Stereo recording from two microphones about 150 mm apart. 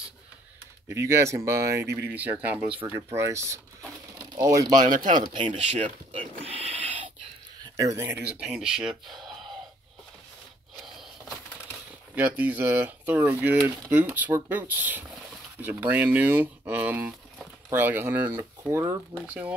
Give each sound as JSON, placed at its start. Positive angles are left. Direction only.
{"t": 0.8, "sound": "speech", "side_deg": -20}
{"t": 4.7, "sound": "speech", "side_deg": -60}
{"t": 5.3, "sound": "speech", "side_deg": -30}
{"t": 7.6, "sound": "speech", "side_deg": -20}
{"t": 12.2, "sound": "speech", "side_deg": -10}